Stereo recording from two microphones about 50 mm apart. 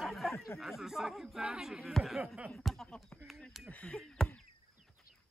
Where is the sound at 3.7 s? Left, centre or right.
Left.